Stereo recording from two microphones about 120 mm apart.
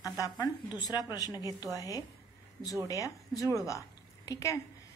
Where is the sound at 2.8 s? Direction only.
30° left (ahead or behind).